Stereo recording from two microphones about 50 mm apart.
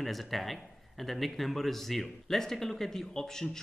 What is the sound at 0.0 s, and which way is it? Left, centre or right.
Speech, centre.